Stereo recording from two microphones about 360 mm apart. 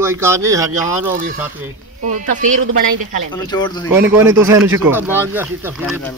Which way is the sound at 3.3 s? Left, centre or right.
Centre.